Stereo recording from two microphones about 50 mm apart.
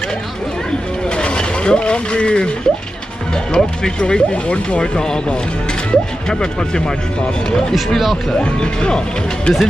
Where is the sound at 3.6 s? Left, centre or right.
Centre.